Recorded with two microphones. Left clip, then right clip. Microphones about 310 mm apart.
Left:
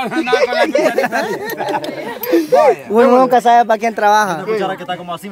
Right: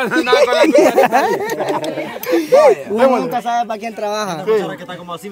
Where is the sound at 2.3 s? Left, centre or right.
Right.